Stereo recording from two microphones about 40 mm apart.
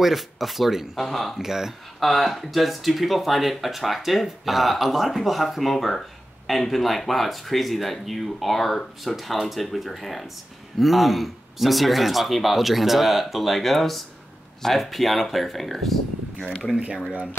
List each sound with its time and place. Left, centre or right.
0.0 s speech: centre
1.4 s speech: centre
2.0 s speech: centre
16.3 s speech: left